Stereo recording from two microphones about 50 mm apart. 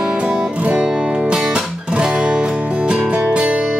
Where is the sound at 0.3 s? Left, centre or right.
Centre.